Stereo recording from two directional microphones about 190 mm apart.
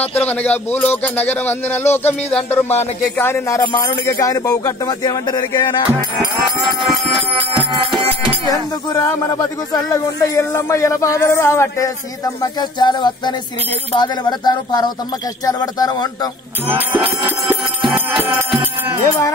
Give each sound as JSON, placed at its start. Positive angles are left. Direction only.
{"t": 0.0, "sound": "speech", "side_deg": 10}
{"t": 8.5, "sound": "speech", "side_deg": 15}
{"t": 16.6, "sound": "music", "side_deg": -10}